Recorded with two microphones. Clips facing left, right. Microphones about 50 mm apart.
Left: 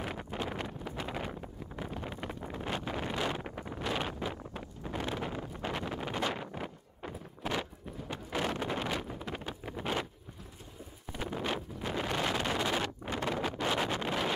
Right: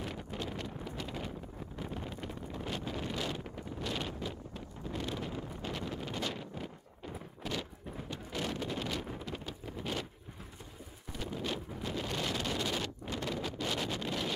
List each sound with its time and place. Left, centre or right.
0.0 s wind noise: left
11.1 s wind noise: left